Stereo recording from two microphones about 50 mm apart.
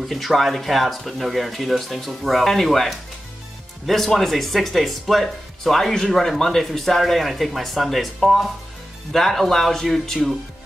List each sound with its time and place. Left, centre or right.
0.1 s speech: centre